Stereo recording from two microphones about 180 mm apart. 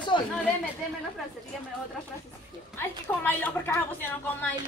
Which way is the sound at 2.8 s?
10° left (ahead or behind).